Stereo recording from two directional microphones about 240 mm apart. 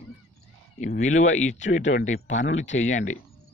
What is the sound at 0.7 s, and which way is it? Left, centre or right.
Speech, left.